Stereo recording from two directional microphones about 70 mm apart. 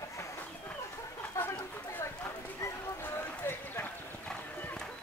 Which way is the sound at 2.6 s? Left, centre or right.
Left.